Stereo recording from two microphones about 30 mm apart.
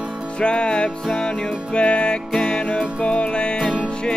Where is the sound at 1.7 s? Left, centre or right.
Left.